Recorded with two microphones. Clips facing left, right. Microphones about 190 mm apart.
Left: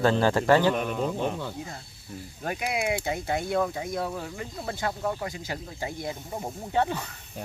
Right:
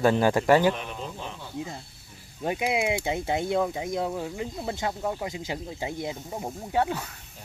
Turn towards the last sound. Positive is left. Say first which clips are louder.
# even
turn(degrees=-5)  # may be behind; listen again after turning